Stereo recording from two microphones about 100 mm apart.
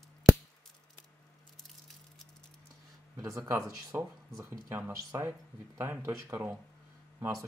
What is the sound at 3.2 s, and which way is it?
Speech, 30° right (ahead or behind).